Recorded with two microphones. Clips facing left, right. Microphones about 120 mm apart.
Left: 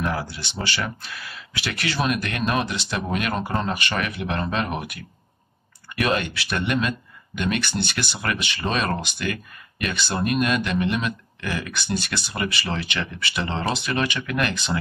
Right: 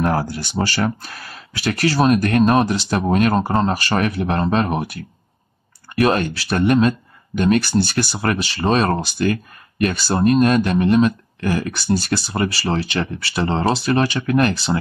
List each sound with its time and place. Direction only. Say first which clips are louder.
0.0 s speech: right 7 dB; 45° right (ahead or behind)